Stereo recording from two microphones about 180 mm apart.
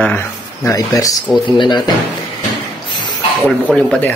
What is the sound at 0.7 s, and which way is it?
Speech, 20° left (ahead or behind).